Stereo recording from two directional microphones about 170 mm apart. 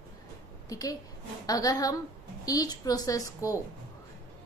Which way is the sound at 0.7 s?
20° left (ahead or behind).